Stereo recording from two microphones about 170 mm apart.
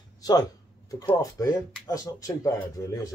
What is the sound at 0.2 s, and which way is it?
Speech, 20° left (ahead or behind).